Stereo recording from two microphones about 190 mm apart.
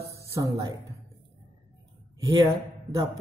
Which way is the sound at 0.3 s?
15° right (ahead or behind).